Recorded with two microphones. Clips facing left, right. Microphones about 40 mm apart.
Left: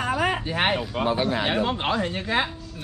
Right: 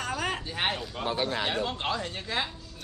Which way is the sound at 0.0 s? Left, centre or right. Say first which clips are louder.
Left 7 dB; centre.